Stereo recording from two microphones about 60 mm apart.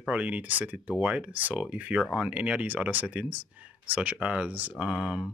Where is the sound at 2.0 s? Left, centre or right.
Centre.